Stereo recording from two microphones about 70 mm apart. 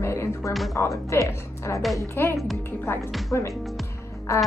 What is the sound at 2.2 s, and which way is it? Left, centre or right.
Speech, left.